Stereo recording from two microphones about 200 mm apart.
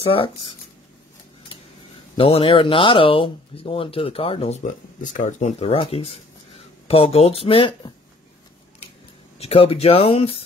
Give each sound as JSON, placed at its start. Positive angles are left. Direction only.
{"t": 0.0, "sound": "speech", "side_deg": 30}
{"t": 2.1, "sound": "speech", "side_deg": 30}
{"t": 9.4, "sound": "speech", "side_deg": 30}